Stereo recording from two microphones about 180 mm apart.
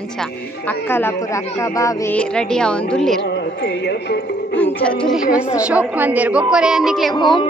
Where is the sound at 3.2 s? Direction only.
70° left (ahead or behind).